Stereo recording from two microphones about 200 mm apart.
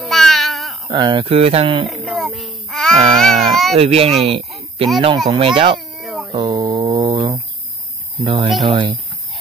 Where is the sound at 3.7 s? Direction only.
30° right (ahead or behind).